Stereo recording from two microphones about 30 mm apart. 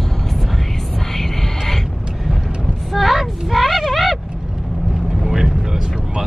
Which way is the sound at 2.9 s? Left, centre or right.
Centre.